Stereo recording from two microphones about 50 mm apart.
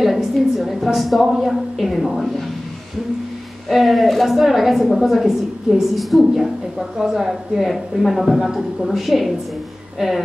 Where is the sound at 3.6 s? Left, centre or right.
Centre.